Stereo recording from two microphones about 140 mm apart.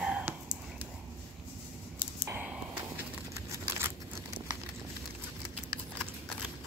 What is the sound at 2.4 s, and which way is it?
Dog, 15° right (ahead or behind).